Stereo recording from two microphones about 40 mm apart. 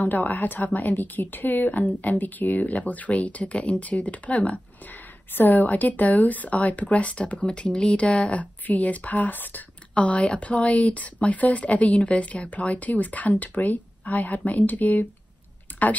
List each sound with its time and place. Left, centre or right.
0.0 s a woman's voice: left
5.3 s speech: left
9.9 s speech: left
15.7 s a sound: left